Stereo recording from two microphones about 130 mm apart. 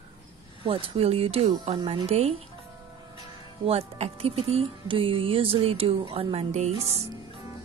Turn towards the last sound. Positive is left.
turn(degrees=-50)  # may be behind; listen again after turning